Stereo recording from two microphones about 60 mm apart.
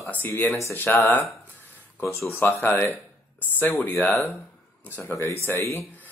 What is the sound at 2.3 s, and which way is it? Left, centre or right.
Speech, left.